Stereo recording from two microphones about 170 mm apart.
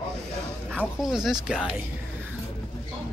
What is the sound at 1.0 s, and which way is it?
Speech, 5° right (ahead or behind).